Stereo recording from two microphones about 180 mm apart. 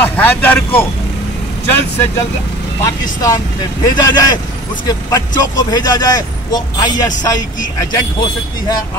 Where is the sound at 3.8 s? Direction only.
20° left (ahead or behind).